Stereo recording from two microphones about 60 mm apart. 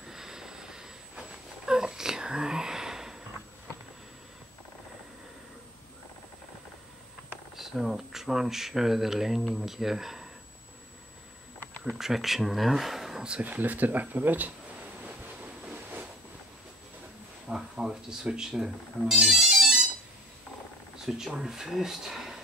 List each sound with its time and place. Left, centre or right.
0.0 s vehicle: centre
1.7 s a sound: centre
7.5 s speech: centre
11.8 s speech: centre
13.4 s speech: right
15.6 s a sound: right
17.5 s speech: centre
21.4 s speech: centre